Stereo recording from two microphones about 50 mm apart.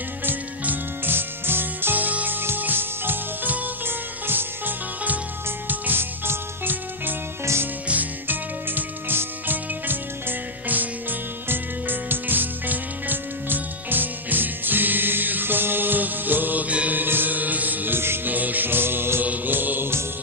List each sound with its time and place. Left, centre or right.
0.2 s music: right
18.3 s music: right
19.2 s mantra: right